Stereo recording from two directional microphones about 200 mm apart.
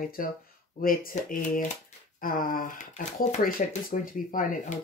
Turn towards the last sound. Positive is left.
turn(degrees=40)  # may be behind; listen again after turning